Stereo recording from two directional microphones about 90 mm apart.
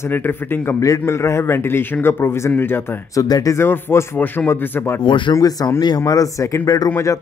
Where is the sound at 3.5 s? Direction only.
25° left (ahead or behind).